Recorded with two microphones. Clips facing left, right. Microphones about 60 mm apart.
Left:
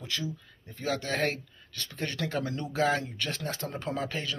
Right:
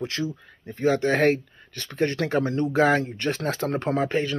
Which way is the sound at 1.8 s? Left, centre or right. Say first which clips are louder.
Right 9 dB; right.